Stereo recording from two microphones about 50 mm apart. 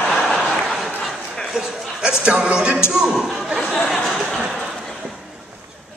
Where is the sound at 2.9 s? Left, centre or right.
Centre.